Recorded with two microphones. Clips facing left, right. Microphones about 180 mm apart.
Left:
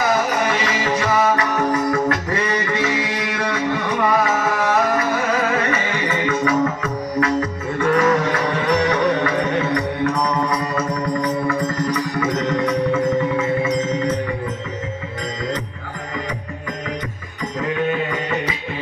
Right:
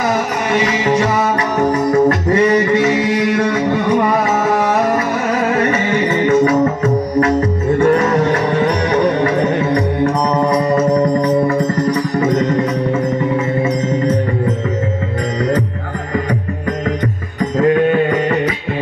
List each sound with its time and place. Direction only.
0.9 s music: 35° right (ahead or behind)
5.6 s music: 35° right (ahead or behind)
17.4 s music: 55° right (ahead or behind)